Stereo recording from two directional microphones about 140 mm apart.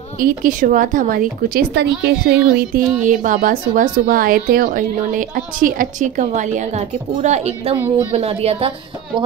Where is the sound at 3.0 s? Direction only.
65° right (ahead or behind).